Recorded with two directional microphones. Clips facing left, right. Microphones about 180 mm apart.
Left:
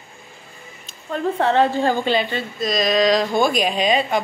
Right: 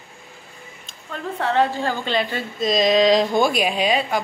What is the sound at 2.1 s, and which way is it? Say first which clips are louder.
Speech: left 2 dB; centre (ahead or behind).